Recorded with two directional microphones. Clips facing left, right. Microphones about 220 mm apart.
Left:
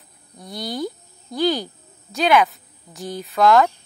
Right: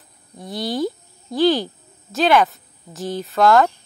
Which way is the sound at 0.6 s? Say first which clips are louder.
Right 4 dB; 25° right (ahead or behind).